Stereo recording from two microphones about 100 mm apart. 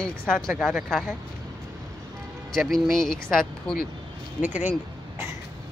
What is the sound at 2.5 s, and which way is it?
Speech, 5° left (ahead or behind).